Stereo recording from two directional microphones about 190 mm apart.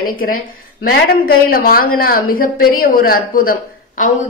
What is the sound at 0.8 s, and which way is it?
Speech, 55° left (ahead or behind).